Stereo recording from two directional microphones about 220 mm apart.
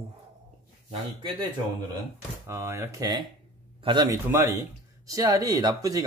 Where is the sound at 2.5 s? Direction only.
10° right (ahead or behind).